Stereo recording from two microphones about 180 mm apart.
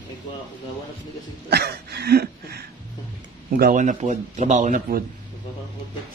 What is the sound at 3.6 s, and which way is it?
Speech, 45° right (ahead or behind).